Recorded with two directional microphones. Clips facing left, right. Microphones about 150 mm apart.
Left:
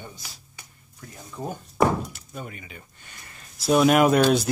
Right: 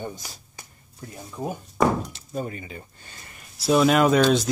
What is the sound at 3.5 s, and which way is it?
Speech, centre (ahead or behind).